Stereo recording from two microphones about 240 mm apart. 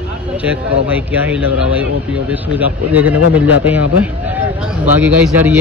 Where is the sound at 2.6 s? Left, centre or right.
Centre.